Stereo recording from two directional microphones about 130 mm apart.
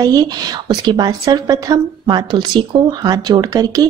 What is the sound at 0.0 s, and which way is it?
A woman's voice, 30° right (ahead or behind).